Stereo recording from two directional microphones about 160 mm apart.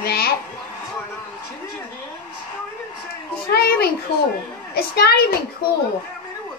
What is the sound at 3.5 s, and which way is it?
Speech, 75° left (ahead or behind).